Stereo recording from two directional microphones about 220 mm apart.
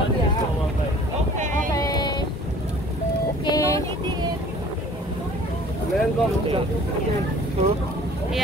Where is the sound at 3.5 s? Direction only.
15° left (ahead or behind).